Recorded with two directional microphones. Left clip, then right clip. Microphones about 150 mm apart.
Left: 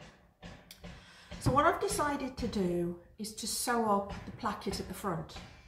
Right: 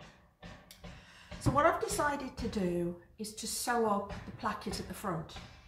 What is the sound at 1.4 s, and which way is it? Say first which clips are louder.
A woman's voice: left 1 dB; 25° right (ahead or behind).